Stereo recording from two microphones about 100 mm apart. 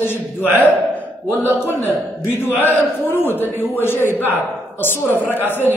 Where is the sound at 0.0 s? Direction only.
20° left (ahead or behind).